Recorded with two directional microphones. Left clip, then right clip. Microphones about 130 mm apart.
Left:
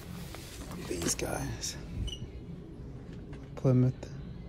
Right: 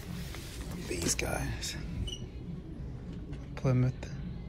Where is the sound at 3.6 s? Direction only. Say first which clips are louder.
Left 4 dB; 40° left (ahead or behind).